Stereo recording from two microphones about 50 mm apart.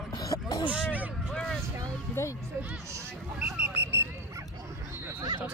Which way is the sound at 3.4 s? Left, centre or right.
Right.